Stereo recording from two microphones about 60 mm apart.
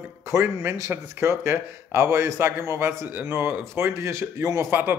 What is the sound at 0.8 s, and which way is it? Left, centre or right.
Speech, right.